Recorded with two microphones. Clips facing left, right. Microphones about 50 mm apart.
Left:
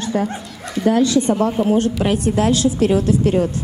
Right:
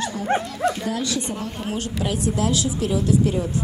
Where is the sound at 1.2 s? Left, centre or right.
Left.